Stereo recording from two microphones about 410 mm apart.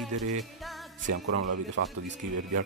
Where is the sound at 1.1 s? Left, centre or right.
Right.